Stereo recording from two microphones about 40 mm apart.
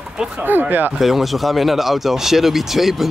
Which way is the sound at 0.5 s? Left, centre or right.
Right.